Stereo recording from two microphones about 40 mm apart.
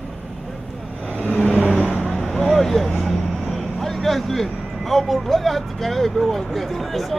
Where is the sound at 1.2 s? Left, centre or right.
Left.